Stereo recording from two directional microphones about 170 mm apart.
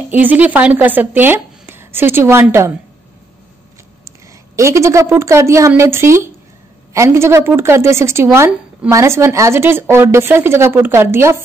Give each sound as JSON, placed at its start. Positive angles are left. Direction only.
{"t": 0.1, "sound": "speech", "side_deg": -10}
{"t": 4.6, "sound": "speech", "side_deg": -15}